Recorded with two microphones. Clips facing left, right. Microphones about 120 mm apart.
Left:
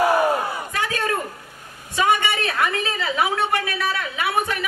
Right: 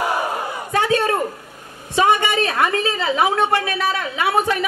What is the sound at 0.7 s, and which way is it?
Speech, 30° right (ahead or behind).